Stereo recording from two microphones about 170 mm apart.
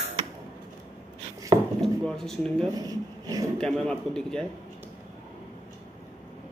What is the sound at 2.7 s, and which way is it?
Speech, 20° right (ahead or behind).